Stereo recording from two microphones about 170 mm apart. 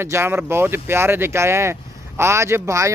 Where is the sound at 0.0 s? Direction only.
15° right (ahead or behind).